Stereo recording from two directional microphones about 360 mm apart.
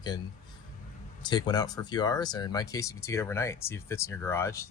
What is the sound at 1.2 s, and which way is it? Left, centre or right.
Speech, centre.